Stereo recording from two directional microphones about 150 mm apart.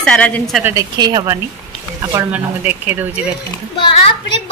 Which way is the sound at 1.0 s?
25° right (ahead or behind).